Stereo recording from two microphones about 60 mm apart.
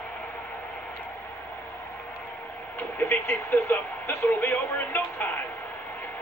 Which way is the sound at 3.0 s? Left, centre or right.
Left.